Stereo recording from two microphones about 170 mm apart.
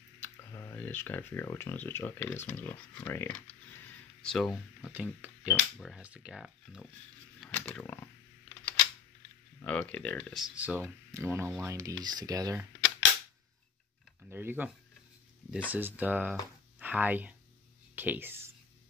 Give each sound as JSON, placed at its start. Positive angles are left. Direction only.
{"t": 0.2, "sound": "speech", "side_deg": 15}
{"t": 7.3, "sound": "a sound", "side_deg": 5}
{"t": 9.6, "sound": "speech", "side_deg": 10}
{"t": 14.2, "sound": "speech", "side_deg": -10}
{"t": 15.7, "sound": "speech", "side_deg": -10}